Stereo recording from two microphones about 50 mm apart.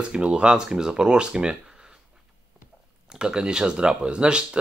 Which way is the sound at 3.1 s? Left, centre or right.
Centre.